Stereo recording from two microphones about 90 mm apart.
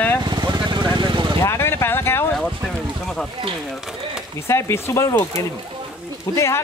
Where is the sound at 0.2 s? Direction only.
55° right (ahead or behind).